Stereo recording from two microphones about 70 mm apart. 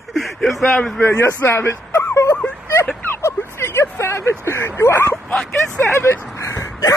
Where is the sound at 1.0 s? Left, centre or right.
Left.